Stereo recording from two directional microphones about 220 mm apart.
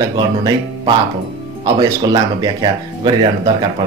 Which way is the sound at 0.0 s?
20° right (ahead or behind).